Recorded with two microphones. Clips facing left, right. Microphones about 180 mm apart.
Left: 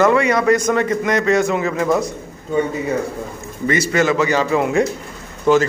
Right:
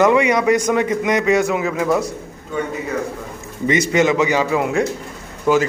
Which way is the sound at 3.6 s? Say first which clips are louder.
Right 1 dB; 20° right (ahead or behind).